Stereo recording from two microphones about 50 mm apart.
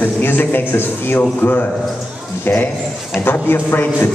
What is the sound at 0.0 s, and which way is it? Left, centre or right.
A man's voice, left.